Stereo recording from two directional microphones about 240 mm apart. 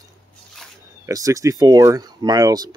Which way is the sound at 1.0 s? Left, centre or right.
Centre.